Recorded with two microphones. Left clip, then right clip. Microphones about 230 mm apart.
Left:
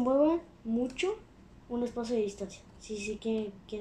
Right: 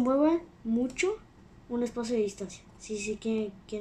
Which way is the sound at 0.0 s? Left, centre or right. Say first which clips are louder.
Right 1 dB; right.